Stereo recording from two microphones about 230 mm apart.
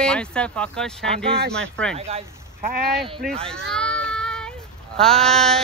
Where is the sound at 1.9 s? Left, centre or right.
Right.